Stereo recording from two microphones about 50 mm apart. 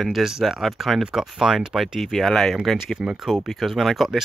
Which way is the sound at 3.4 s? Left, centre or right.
Centre.